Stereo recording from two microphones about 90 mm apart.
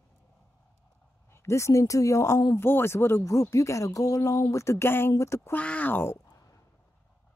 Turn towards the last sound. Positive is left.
turn(degrees=20)  # may be behind; listen again after turning